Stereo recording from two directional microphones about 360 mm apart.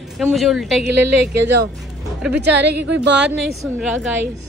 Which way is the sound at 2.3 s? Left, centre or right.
Right.